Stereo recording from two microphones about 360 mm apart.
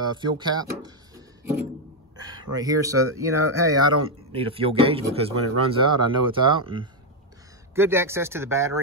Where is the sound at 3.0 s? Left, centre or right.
Right.